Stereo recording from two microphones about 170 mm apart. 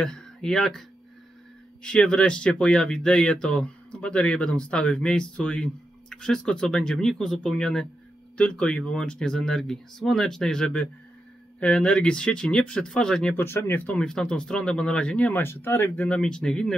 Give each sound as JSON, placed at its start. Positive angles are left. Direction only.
{"t": 0.0, "sound": "speech", "side_deg": 5}